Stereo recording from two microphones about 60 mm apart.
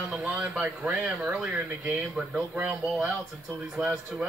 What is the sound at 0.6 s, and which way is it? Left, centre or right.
Speech, right.